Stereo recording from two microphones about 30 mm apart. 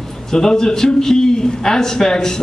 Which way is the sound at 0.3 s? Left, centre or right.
Centre.